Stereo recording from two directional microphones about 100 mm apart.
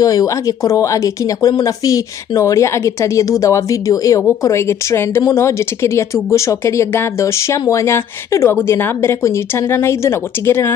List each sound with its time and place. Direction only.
0.0 s a woman's voice: 40° left (ahead or behind)